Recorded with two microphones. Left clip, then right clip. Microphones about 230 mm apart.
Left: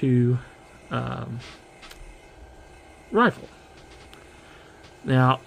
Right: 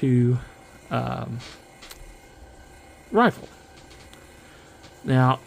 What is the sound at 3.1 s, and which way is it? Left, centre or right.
Speech, centre.